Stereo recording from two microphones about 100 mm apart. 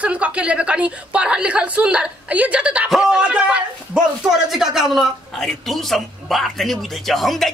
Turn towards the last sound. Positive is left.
turn(degrees=0)  # may be behind; listen again after turning